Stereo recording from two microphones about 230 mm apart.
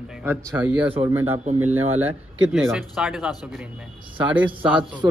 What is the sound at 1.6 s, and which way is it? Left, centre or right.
Speech, right.